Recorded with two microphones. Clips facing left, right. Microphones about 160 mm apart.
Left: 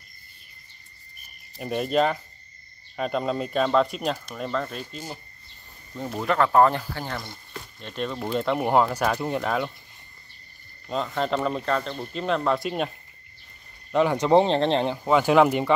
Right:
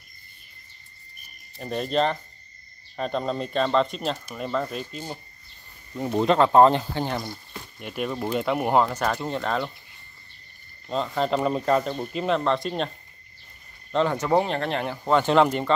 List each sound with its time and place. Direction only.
1.6 s speech: 5° left (ahead or behind)
4.3 s speech: 5° right (ahead or behind)
6.1 s speech: 25° right (ahead or behind)
7.8 s speech: 10° right (ahead or behind); by 9.7 s 10° left (ahead or behind)
10.9 s speech: centre (ahead or behind)
14.2 s speech: 25° left (ahead or behind)
15.0 s speech: 10° left (ahead or behind)